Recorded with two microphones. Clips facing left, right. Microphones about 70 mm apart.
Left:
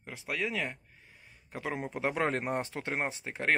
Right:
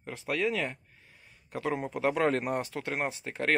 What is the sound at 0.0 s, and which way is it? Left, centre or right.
Speech, centre.